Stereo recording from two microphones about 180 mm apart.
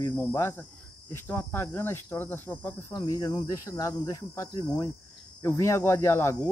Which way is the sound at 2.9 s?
20° left (ahead or behind).